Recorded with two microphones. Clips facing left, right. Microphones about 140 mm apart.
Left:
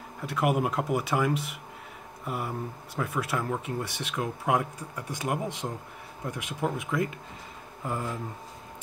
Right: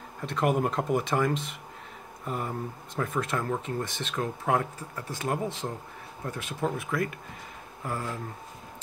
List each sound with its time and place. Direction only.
0.3 s speech: 10° left (ahead or behind)